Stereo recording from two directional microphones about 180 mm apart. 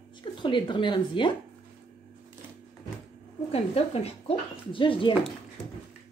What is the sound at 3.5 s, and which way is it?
Speech, 35° left (ahead or behind).